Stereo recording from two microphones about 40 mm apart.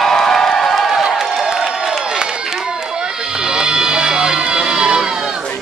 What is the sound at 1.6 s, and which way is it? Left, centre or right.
Crowd, centre.